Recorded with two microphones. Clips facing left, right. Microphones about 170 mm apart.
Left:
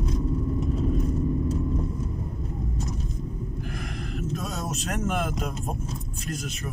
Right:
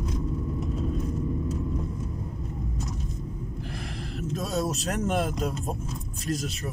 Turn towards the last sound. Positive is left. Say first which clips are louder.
# right 1 dB
turn(degrees=-35)  # may be behind; listen again after turning